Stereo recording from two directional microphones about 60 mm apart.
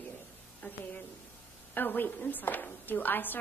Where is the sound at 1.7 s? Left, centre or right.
Left.